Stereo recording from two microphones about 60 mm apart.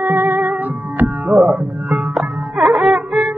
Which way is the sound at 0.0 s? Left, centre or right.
Right.